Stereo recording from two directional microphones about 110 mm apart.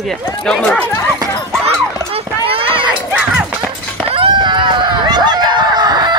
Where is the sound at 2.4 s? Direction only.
55° right (ahead or behind).